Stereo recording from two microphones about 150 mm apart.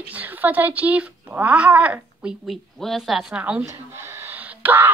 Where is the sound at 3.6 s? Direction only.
15° right (ahead or behind).